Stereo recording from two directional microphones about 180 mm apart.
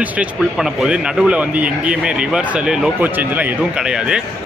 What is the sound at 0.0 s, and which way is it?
Speech, 5° right (ahead or behind).